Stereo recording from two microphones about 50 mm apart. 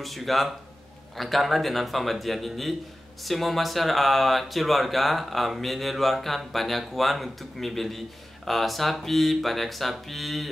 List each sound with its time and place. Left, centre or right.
0.0 s speech: centre